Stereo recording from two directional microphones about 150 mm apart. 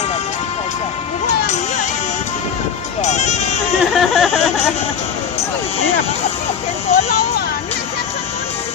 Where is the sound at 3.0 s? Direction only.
50° left (ahead or behind).